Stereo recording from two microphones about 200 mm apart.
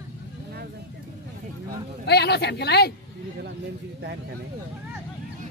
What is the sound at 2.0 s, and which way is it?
Speech, 55° left (ahead or behind).